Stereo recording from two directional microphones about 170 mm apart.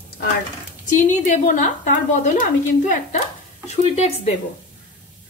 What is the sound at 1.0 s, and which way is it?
A woman's voice, 45° left (ahead or behind).